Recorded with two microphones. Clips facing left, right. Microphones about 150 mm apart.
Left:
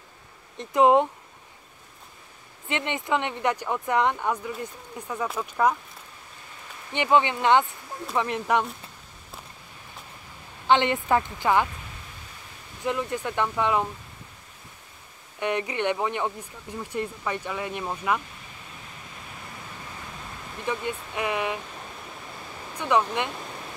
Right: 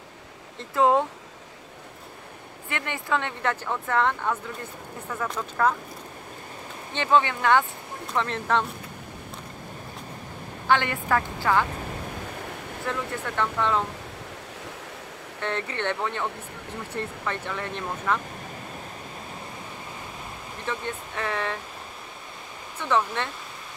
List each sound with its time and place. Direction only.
0.6 s a woman's voice: 20° left (ahead or behind)
2.7 s speech: 20° left (ahead or behind)
6.9 s speech: 15° left (ahead or behind)
10.7 s a woman's voice: 20° left (ahead or behind)
12.1 s a sound: 65° right (ahead or behind)
12.8 s speech: 15° left (ahead or behind)
15.4 s speech: 15° left (ahead or behind)
20.6 s speech: 15° left (ahead or behind)
22.8 s speech: 15° left (ahead or behind)